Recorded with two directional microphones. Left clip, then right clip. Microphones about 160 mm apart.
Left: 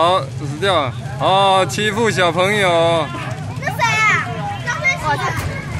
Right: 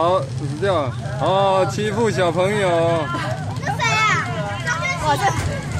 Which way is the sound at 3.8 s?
35° left (ahead or behind).